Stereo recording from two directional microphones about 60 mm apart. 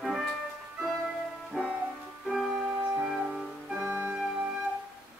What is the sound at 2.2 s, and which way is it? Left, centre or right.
Music, centre.